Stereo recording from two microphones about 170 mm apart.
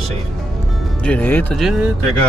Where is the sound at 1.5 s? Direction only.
Centre (ahead or behind).